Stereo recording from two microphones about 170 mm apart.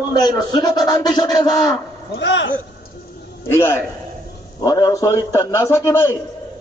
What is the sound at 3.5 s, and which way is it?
A man's voice, 15° left (ahead or behind).